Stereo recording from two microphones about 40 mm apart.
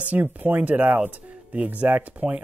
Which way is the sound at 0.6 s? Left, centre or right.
Right.